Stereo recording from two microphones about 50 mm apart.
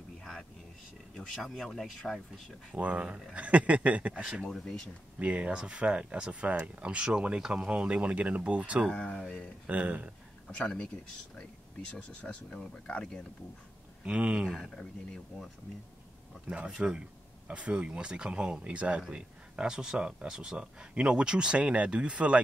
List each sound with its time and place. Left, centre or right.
0.2 s a sound: centre
1.1 s speech: centre
2.7 s speech: right
4.2 s speech: centre
4.5 s speech: centre
5.2 s speech: right
6.4 s speech: right
8.9 s speech: centre
9.7 s speech: right
12.2 s speech: left
14.0 s speech: right
16.4 s speech: centre